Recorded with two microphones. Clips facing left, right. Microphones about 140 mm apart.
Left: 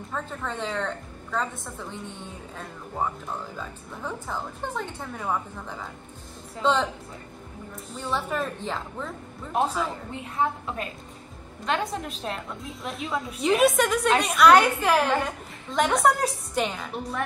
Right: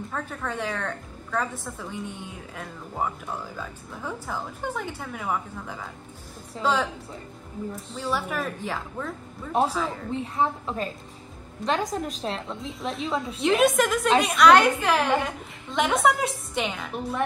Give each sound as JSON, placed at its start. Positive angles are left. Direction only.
{"t": 0.1, "sound": "a woman's voice", "side_deg": 5}
{"t": 8.0, "sound": "a woman's voice", "side_deg": -5}
{"t": 10.1, "sound": "a woman's voice", "side_deg": -30}
{"t": 12.8, "sound": "a woman's voice", "side_deg": 0}